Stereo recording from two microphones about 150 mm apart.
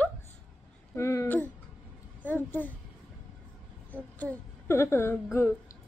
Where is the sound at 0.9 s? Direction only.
20° left (ahead or behind).